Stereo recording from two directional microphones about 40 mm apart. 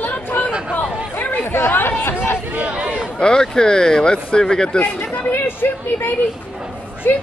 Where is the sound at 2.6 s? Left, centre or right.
Right.